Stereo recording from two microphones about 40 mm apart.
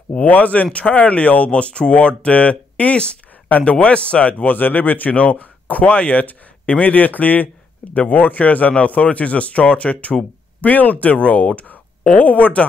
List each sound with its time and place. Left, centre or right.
0.1 s speech: left
3.4 s speech: left
3.8 s speech: left
4.6 s speech: left